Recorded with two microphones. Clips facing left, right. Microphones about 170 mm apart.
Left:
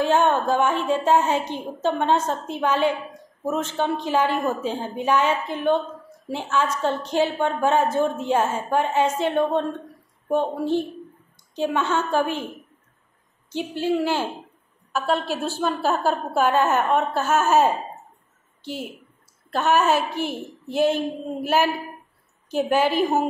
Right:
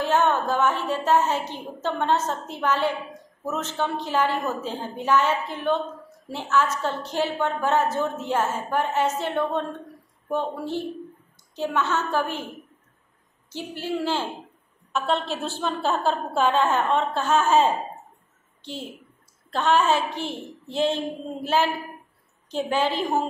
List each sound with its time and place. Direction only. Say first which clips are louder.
0.0 s a woman's voice: left 2 dB; 15° left (ahead or behind)
13.5 s a woman's voice: left 6 dB; 20° left (ahead or behind)
14.9 s a woman's voice: left 2 dB; centre (ahead or behind)